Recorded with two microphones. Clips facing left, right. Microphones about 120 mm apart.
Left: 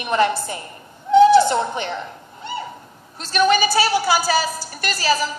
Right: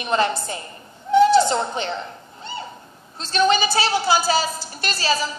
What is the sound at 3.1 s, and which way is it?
A woman's voice, 25° right (ahead or behind).